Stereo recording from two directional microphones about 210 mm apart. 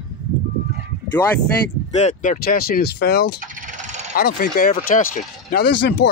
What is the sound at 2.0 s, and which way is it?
Speech, 35° left (ahead or behind).